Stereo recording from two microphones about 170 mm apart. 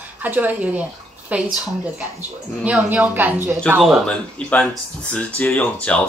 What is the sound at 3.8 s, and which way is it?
Speech, 5° left (ahead or behind).